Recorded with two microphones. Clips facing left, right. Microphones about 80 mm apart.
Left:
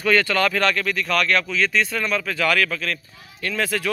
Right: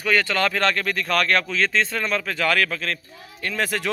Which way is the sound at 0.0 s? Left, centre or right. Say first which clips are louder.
Left 2 dB; centre.